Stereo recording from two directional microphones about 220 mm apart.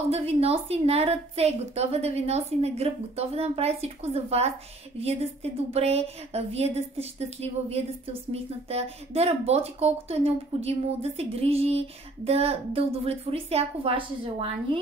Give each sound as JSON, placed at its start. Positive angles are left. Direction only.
{"t": 0.1, "sound": "a woman's voice", "side_deg": -30}